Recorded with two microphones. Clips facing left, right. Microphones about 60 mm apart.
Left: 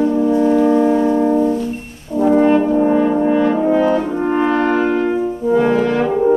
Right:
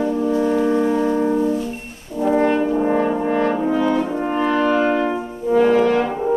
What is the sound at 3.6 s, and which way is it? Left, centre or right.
French horn, left.